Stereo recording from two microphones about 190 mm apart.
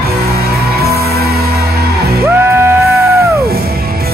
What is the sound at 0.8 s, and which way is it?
Music, 55° right (ahead or behind).